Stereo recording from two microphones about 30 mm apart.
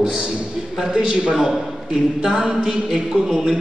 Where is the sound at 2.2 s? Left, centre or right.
Right.